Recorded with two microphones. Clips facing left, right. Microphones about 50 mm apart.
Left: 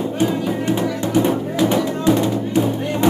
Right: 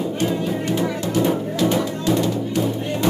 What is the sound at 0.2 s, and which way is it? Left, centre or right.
Music, centre.